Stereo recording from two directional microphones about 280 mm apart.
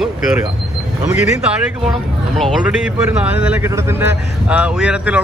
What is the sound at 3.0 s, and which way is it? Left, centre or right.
A man's voice, centre.